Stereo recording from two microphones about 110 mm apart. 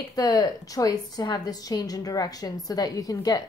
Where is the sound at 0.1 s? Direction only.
35° left (ahead or behind).